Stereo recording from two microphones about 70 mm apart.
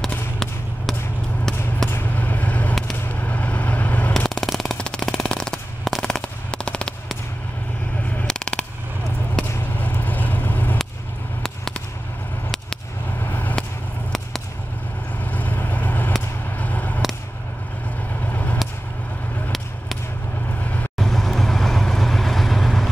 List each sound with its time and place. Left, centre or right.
1.9 s vehicle: left
2.1 s vehicle: left
4.1 s shuffling cards: centre
6.0 s machine gun: centre
8.3 s a sound: centre
9.8 s vehicle: left
11.4 s a sound: centre
13.2 s vehicle: left
15.3 s vehicle: left
18.3 s vehicle: left
21.0 s vehicle: centre